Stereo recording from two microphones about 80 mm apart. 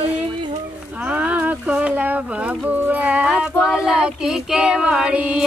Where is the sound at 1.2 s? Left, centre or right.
Centre.